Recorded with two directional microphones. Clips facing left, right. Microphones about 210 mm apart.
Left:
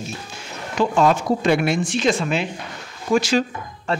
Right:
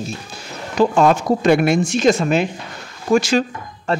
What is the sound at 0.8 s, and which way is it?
Speech, 45° right (ahead or behind).